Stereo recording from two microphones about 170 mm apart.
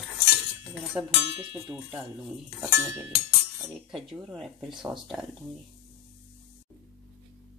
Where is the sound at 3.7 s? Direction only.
Centre (ahead or behind).